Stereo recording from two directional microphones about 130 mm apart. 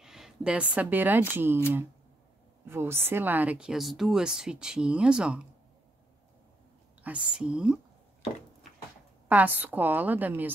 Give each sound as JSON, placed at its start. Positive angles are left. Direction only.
{"t": 0.0, "sound": "a woman's voice", "side_deg": -5}
{"t": 2.6, "sound": "speech", "side_deg": -20}
{"t": 7.0, "sound": "speech", "side_deg": -10}
{"t": 9.3, "sound": "speech", "side_deg": -15}